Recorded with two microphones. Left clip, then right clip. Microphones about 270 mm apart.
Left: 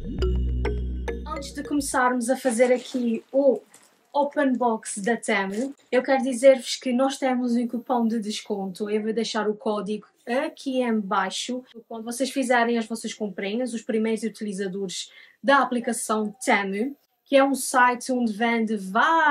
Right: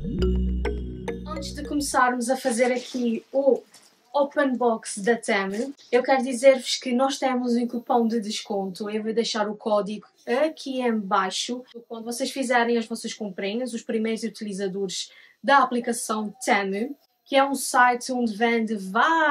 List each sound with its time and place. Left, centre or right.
0.3 s music: centre
1.4 s a woman's voice: centre
4.1 s a woman's voice: centre